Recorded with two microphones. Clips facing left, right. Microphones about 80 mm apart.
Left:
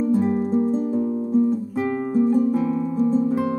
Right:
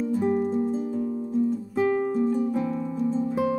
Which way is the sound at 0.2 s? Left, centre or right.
Centre.